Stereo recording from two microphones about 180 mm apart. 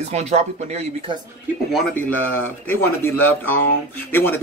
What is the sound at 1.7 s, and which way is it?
Speech, 10° left (ahead or behind).